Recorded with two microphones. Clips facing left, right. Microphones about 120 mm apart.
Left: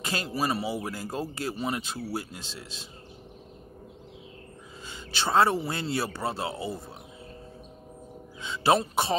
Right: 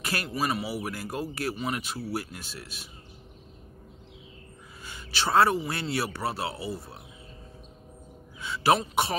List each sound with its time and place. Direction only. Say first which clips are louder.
0.0 s speech: left 1 dB; 25° left (ahead or behind)
4.8 s speech: even; 25° left (ahead or behind)
8.4 s speech: even; 25° left (ahead or behind)